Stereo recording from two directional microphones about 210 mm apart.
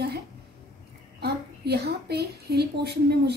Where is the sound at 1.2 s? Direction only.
50° right (ahead or behind).